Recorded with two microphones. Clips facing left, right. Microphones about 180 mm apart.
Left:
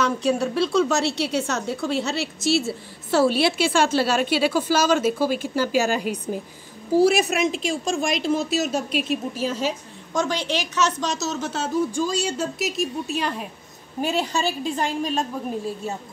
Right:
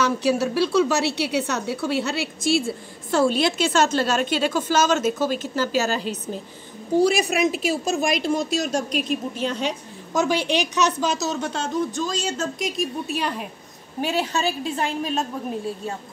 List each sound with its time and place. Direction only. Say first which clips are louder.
0.0 s a woman's voice: right 1 dB; 5° right (ahead or behind)
10.2 s speech: right 6 dB; 10° right (ahead or behind)